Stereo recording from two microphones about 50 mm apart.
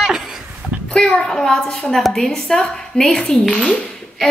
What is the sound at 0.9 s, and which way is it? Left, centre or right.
A woman's voice, centre.